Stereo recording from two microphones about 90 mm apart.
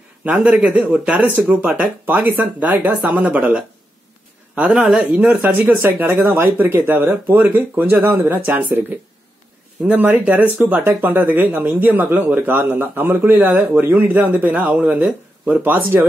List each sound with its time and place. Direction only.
0.2 s speech: 15° right (ahead or behind)
9.8 s speech: 20° right (ahead or behind)
10.6 s speech: 30° right (ahead or behind)